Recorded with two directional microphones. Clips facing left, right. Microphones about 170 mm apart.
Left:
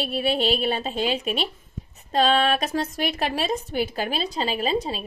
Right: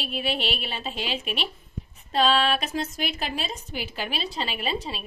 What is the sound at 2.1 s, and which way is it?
A woman's voice, 45° left (ahead or behind).